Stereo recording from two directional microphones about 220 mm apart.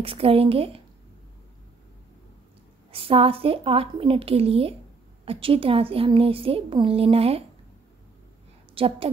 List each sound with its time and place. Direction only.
0.0 s a woman's voice: 25° right (ahead or behind)
2.9 s a woman's voice: 25° right (ahead or behind)
8.7 s a woman's voice: 25° right (ahead or behind)